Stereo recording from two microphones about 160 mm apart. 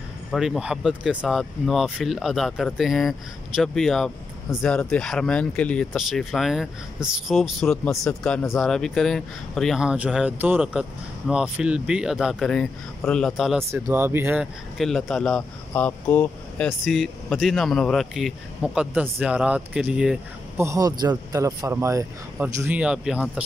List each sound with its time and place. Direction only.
0.3 s speech: centre (ahead or behind)
13.7 s speech: 15° right (ahead or behind)
14.8 s speech: centre (ahead or behind)
20.5 s speech: 20° right (ahead or behind)